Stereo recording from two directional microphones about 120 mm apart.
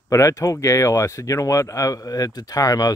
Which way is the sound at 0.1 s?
25° left (ahead or behind).